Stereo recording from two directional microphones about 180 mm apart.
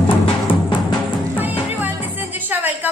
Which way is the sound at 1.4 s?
10° right (ahead or behind).